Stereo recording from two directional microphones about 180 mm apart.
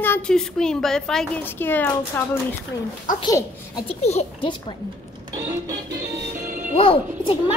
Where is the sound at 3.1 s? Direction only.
25° left (ahead or behind).